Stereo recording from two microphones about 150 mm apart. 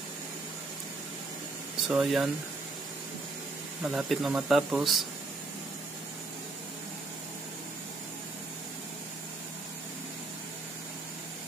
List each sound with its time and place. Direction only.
1.9 s speech: 5° right (ahead or behind)
3.8 s speech: centre (ahead or behind)